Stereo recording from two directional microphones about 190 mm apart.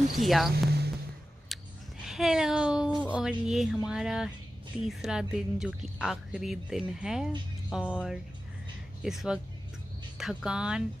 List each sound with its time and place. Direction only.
0.2 s a woman's voice: centre (ahead or behind)
0.7 s a sound: 55° right (ahead or behind)
2.0 s a woman's voice: centre (ahead or behind)
9.0 s a woman's voice: centre (ahead or behind)